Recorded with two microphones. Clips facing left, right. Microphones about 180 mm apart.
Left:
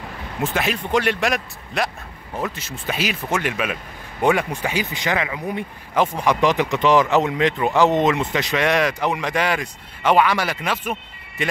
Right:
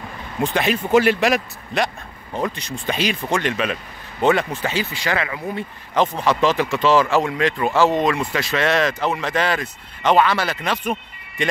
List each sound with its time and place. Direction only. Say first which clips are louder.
0.4 s speech: right 3 dB; centre (ahead or behind)